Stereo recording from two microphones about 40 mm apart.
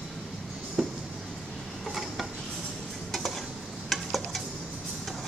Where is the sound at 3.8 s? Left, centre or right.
Centre.